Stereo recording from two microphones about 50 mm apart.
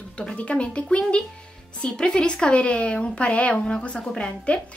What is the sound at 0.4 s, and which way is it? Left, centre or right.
A woman's voice, left.